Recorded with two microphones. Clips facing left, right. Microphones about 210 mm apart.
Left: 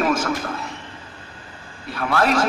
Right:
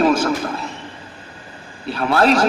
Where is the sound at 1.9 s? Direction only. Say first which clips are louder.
Right 4 dB; 30° right (ahead or behind).